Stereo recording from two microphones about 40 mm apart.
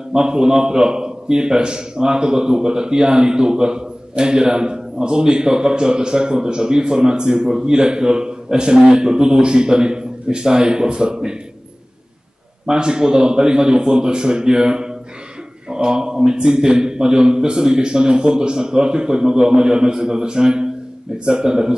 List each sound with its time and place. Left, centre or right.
0.1 s a man's voice: centre
12.6 s a man's voice: centre